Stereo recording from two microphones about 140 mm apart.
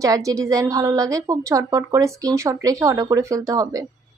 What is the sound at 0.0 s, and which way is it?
A woman's voice, 25° right (ahead or behind).